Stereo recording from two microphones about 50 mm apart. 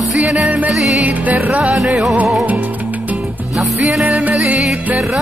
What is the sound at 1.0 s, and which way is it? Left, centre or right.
Music, right.